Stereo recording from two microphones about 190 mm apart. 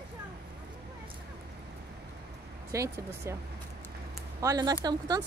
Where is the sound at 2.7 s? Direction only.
15° right (ahead or behind).